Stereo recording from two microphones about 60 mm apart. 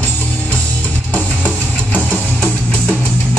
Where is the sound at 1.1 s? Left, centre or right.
Left.